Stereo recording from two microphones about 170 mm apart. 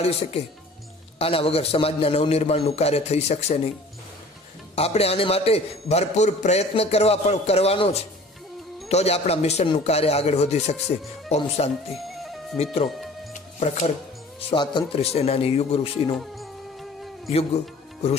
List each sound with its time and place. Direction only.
0.0 s a man's voice: 35° left (ahead or behind)
4.7 s a man's voice: 35° left (ahead or behind)
11.9 s music: centre (ahead or behind)
13.3 s music: 40° left (ahead or behind)
14.5 s a man's voice: 25° left (ahead or behind)
16.2 s music: centre (ahead or behind)